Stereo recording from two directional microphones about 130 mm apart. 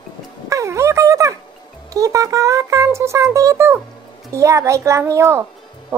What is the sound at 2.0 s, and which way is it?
A woman's voice, 25° right (ahead or behind).